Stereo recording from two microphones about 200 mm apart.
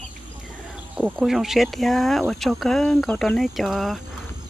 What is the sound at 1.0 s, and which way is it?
Speech, centre (ahead or behind).